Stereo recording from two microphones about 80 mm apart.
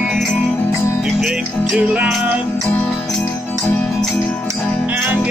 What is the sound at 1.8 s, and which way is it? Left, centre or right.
Music, centre.